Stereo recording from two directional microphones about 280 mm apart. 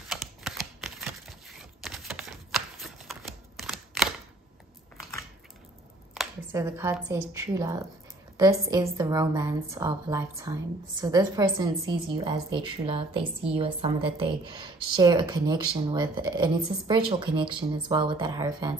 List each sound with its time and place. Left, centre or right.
0.1 s typing: centre
6.1 s a woman's voice: centre